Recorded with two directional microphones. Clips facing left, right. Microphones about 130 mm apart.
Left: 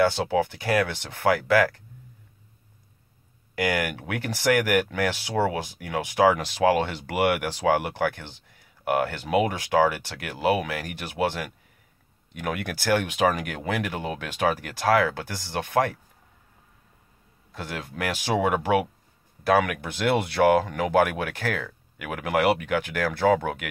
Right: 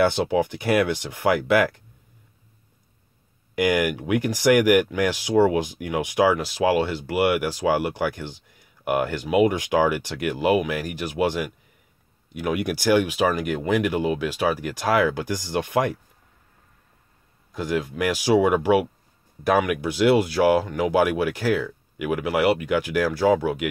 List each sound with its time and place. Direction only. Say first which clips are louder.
0.1 s speech: right 2 dB; 15° right (ahead or behind)
3.5 s speech: right 5 dB; 15° right (ahead or behind)
6.3 s speech: right 1 dB; 5° right (ahead or behind)
17.5 s speech: right 9 dB; 10° right (ahead or behind)